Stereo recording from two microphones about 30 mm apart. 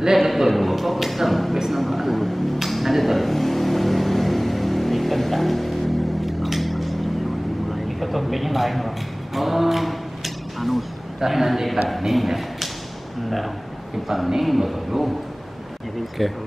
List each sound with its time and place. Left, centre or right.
0.2 s speech: centre
1.7 s a sound: centre
11.1 s a man's voice: centre
14.0 s speech: centre
16.2 s speech: centre